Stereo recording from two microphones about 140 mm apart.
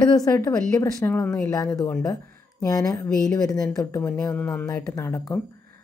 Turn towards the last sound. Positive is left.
turn(degrees=20)  # may be behind; listen again after turning